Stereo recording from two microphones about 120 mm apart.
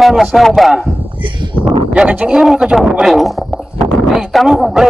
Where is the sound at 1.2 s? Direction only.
45° right (ahead or behind).